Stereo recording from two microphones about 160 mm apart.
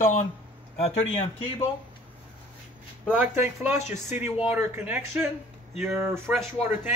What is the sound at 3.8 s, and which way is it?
Speech, 45° left (ahead or behind).